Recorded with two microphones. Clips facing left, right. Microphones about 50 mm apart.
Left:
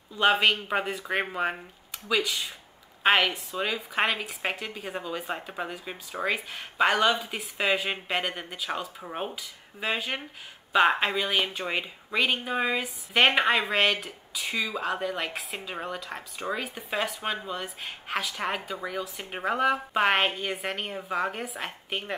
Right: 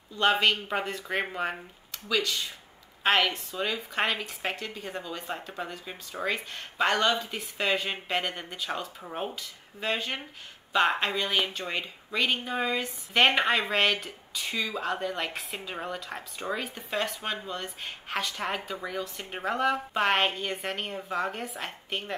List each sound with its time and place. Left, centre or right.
0.1 s speech: centre